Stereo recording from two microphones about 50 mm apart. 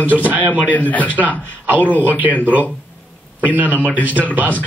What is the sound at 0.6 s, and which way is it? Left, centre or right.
Speech, left.